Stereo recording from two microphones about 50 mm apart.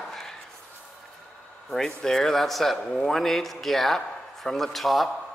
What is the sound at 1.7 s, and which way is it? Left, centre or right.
Speech, centre.